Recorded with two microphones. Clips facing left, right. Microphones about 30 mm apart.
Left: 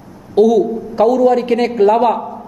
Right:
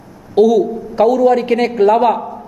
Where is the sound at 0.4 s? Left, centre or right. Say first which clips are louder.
Even; centre.